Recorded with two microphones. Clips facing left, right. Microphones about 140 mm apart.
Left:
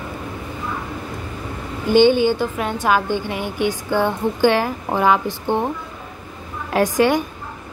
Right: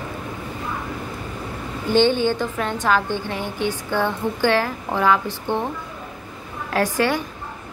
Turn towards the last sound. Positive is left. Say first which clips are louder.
# left 4 dB
turn(degrees=15)  # may be behind; listen again after turning